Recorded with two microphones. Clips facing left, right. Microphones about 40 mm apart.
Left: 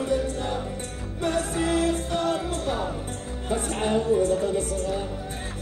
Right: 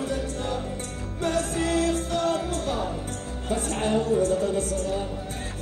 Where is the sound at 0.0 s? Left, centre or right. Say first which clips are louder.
Left 3 dB; left.